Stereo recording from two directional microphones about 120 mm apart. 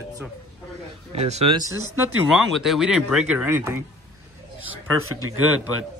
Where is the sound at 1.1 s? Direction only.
60° right (ahead or behind).